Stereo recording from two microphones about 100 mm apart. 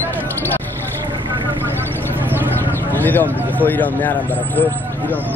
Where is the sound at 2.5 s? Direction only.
20° left (ahead or behind).